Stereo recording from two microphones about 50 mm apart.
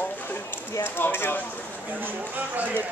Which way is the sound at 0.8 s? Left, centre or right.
Left.